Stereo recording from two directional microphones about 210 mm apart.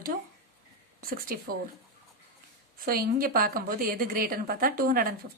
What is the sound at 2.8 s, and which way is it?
A woman's voice, 40° right (ahead or behind).